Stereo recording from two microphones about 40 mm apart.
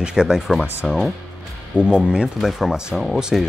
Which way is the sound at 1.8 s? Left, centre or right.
Right.